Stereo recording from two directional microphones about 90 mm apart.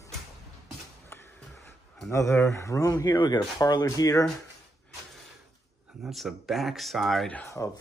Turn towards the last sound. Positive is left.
turn(degrees=20)  # may be behind; listen again after turning